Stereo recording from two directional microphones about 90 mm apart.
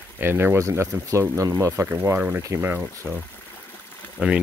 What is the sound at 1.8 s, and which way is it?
Speech, 20° right (ahead or behind).